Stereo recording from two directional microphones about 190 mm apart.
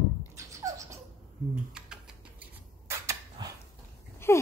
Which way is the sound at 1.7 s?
5° right (ahead or behind).